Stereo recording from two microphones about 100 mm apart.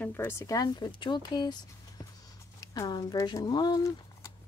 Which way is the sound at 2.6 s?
40° left (ahead or behind).